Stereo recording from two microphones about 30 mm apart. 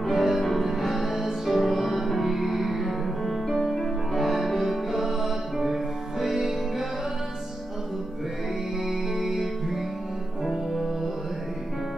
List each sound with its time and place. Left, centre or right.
0.1 s music: centre
8.8 s music: centre